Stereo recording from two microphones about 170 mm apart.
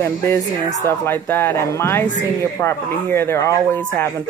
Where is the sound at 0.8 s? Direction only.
15° left (ahead or behind).